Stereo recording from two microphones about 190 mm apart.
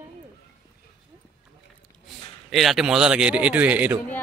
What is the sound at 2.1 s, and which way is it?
Speech, centre (ahead or behind).